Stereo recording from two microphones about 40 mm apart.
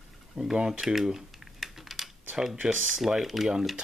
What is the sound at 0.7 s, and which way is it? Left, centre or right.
Typing, centre.